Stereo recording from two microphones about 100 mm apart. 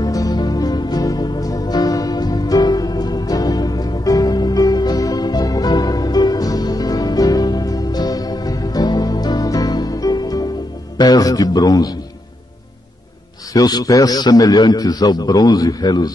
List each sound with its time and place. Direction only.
0.0 s music: 40° left (ahead or behind)
11.0 s a man's voice: 40° left (ahead or behind)
13.5 s a man's voice: 40° left (ahead or behind)